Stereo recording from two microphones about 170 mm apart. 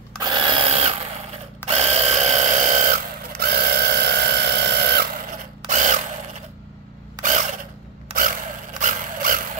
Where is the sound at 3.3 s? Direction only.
65° right (ahead or behind).